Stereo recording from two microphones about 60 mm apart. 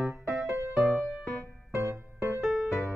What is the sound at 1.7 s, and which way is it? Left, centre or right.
Music, right.